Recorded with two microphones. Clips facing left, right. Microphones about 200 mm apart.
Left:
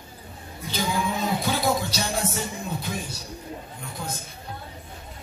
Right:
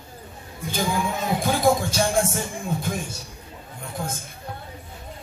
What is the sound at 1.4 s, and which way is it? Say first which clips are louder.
Music: right 4 dB; 50° right (ahead or behind).